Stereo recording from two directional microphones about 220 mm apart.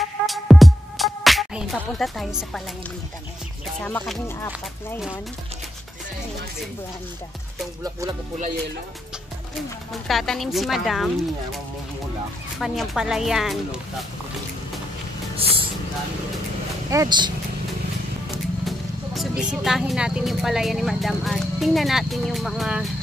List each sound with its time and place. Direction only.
0.3 s music: centre (ahead or behind)
1.8 s speech: centre (ahead or behind)
3.8 s speech: 5° left (ahead or behind)
10.0 s speech: centre (ahead or behind)
12.5 s speech: centre (ahead or behind)
15.3 s vehicle: 25° right (ahead or behind)
16.9 s speech: 15° right (ahead or behind)
18.3 s speech: centre (ahead or behind)